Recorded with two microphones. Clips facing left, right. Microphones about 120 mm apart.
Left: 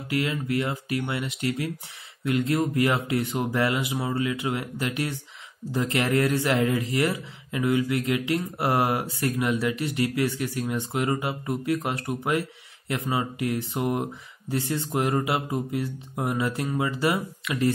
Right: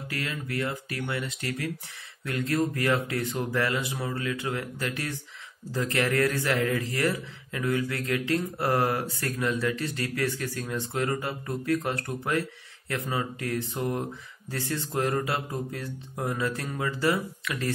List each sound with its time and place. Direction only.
0.1 s a man's voice: 20° left (ahead or behind)